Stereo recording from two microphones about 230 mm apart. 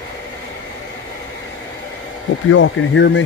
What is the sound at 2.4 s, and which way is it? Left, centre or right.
Speech, left.